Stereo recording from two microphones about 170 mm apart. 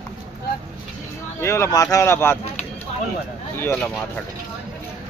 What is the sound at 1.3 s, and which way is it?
Speech, 15° left (ahead or behind).